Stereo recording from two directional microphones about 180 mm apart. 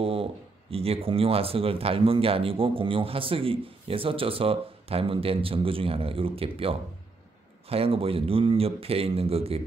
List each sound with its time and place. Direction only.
0.0 s speech: 30° right (ahead or behind)